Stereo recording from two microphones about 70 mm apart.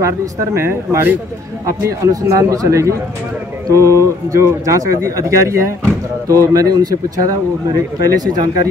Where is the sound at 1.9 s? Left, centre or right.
Right.